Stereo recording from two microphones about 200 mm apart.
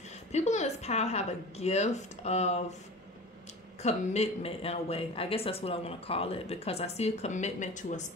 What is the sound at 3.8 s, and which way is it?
Speech, 35° left (ahead or behind).